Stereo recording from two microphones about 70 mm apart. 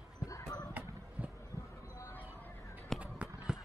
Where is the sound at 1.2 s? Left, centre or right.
Centre.